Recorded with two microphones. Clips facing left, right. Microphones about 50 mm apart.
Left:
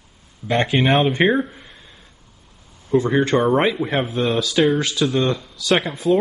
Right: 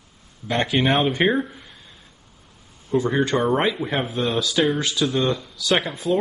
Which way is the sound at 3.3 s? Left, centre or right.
Centre.